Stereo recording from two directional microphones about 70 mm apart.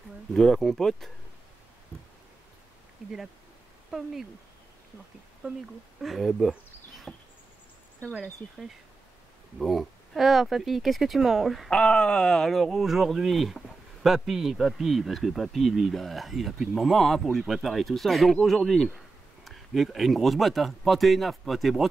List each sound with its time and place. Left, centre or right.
0.3 s speech: centre
3.0 s speech: centre
5.4 s speech: centre
6.0 s speech: centre
7.1 s a sound: centre
8.2 s speech: centre
11.7 s speech: centre